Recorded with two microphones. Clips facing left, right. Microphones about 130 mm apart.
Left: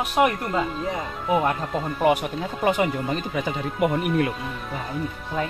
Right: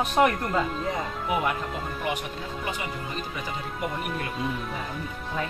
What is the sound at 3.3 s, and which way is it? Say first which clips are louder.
Speech: left 8 dB; 65° left (ahead or behind).